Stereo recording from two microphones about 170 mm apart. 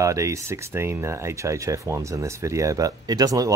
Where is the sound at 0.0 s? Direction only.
20° right (ahead or behind).